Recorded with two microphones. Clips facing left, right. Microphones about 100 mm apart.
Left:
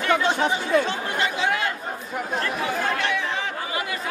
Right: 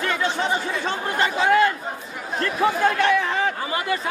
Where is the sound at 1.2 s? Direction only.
45° right (ahead or behind).